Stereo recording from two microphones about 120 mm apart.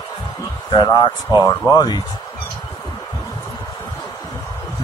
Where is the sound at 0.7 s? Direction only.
40° left (ahead or behind).